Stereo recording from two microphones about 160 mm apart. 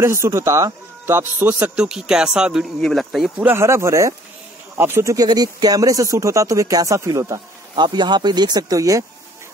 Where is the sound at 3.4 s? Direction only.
15° right (ahead or behind).